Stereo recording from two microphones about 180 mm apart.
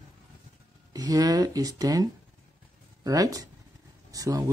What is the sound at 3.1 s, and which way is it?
Speech, 20° right (ahead or behind).